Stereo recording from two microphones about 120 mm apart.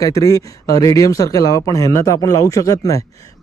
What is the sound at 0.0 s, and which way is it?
Speech, 30° left (ahead or behind).